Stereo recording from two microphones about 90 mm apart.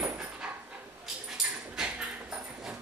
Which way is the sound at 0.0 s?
15° right (ahead or behind).